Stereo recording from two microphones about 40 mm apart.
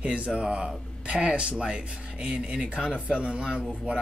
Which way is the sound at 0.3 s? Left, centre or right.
Right.